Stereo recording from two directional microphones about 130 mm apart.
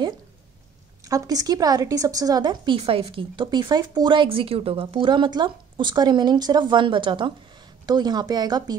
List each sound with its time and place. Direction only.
1.0 s speech: 25° right (ahead or behind)